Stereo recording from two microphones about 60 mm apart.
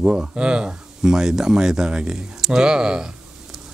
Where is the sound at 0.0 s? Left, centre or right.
Centre.